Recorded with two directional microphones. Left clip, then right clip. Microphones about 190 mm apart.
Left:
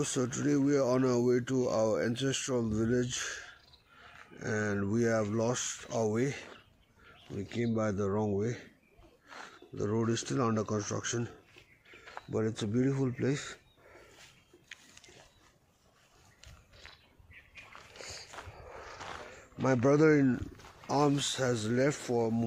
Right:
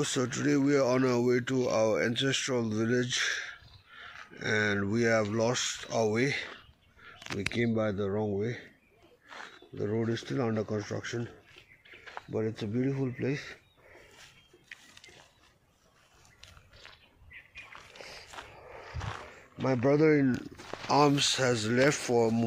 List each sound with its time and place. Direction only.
0.0 s speech: centre (ahead or behind)
7.3 s speech: 25° right (ahead or behind)
7.8 s speech: 10° left (ahead or behind)
9.8 s speech: 5° left (ahead or behind)
12.0 s a sound: 50° right (ahead or behind)
12.3 s speech: 15° left (ahead or behind)
17.9 s a sound: 10° left (ahead or behind)
18.9 s a sound: 45° right (ahead or behind)
19.6 s speech: 15° left (ahead or behind)
20.2 s speech: 5° right (ahead or behind)